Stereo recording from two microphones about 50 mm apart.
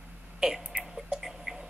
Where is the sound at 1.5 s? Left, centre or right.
Centre.